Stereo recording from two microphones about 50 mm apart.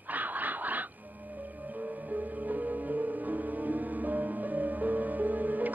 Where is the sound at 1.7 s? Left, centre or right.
Right.